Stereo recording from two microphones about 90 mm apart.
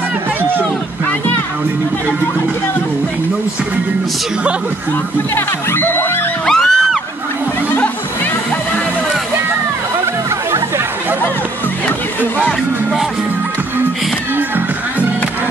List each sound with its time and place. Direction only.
5.3 s speech: 25° left (ahead or behind)
6.4 s music: 5° left (ahead or behind)